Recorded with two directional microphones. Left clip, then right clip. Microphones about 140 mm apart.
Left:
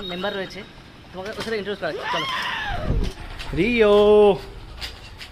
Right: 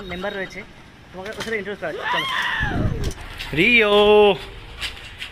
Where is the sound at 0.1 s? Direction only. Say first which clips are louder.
Even; 5° left (ahead or behind).